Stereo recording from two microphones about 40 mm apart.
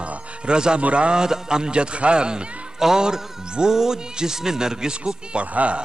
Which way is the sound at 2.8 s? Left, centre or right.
Centre.